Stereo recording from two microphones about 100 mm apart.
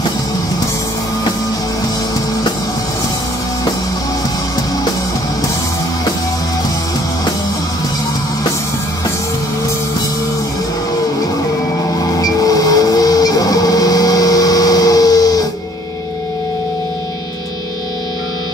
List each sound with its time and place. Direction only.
12.0 s train: 40° left (ahead or behind)